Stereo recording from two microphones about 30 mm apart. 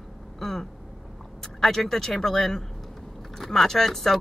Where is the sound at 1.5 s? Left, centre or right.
Centre.